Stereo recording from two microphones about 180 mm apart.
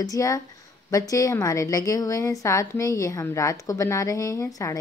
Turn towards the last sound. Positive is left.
turn(degrees=20)  # may be behind; listen again after turning